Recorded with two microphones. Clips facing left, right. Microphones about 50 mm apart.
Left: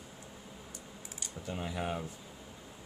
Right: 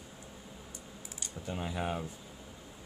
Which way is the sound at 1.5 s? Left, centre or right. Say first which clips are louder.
Right 1 dB; centre.